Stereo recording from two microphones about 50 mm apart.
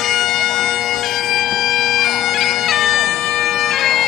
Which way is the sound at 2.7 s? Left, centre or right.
Centre.